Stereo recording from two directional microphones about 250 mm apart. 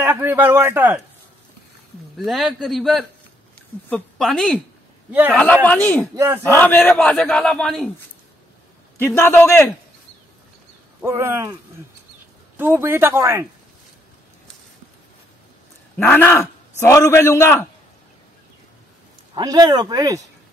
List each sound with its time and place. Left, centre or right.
0.0 s speech: centre
2.1 s a man's voice: centre
6.1 s speech: centre
6.4 s a man's voice: centre
8.9 s a man's voice: centre
11.0 s speech: centre
12.5 s speech: centre
16.0 s a man's voice: centre
19.3 s speech: centre